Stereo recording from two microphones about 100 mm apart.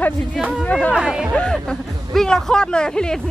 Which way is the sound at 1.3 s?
5° left (ahead or behind).